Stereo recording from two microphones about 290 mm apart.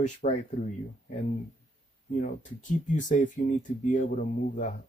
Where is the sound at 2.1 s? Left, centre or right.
Left.